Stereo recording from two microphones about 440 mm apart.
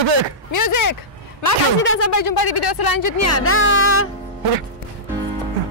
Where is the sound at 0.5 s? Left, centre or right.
Left.